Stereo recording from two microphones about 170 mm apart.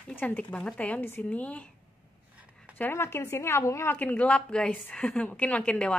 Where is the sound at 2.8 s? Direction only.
15° left (ahead or behind).